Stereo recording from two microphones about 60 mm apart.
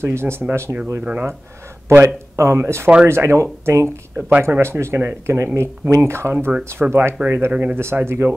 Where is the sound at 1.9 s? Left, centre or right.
Right.